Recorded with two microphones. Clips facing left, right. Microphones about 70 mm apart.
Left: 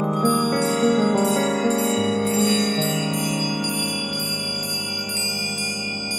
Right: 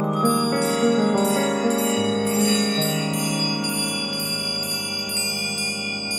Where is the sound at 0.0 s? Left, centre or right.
Centre.